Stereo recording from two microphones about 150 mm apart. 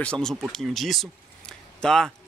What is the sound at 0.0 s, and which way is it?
Speech, 5° left (ahead or behind).